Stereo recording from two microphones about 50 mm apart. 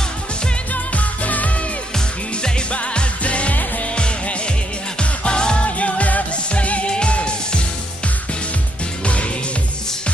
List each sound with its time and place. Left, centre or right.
0.9 s music of asia: left
2.7 s music: left